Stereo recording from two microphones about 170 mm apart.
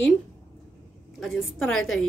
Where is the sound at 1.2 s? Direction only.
Centre (ahead or behind).